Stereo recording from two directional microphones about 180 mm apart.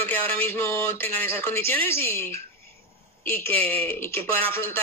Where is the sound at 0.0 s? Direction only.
10° left (ahead or behind).